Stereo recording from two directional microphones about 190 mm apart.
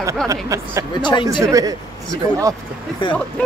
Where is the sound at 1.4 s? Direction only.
20° right (ahead or behind).